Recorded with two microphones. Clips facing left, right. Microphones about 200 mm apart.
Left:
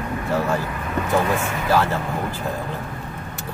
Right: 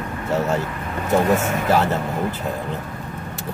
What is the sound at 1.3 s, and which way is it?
Speech, 45° right (ahead or behind).